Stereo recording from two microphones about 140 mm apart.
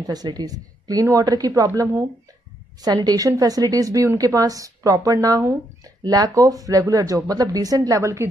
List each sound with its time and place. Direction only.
0.0 s a woman's voice: 30° right (ahead or behind)